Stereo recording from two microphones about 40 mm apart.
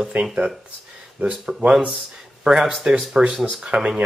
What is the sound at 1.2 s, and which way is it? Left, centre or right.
Speech, right.